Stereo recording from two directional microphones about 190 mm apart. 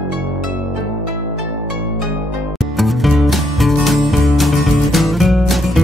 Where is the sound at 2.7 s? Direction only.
Centre (ahead or behind).